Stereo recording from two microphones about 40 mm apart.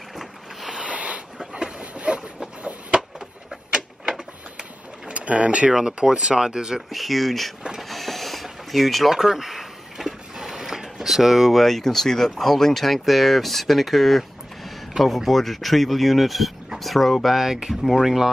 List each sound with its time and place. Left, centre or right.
0.1 s vehicle: centre
0.7 s a sound: right
1.8 s train: right
5.0 s sewing machine: right
5.7 s speech: centre
6.9 s speech: centre
7.9 s a sound: centre
15.0 s speech: centre